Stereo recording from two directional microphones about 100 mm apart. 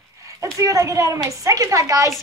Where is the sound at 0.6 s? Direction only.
30° right (ahead or behind).